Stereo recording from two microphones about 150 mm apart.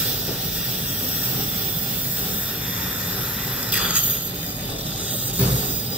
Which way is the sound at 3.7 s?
10° right (ahead or behind).